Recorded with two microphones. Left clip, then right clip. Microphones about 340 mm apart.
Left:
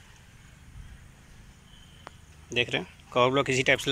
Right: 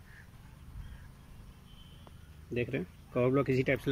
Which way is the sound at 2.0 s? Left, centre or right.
Left.